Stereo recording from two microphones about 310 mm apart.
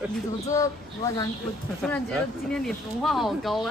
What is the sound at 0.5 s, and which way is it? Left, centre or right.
Speech, centre.